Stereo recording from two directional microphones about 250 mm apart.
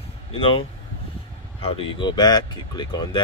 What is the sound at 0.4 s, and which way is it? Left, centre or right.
Speech, left.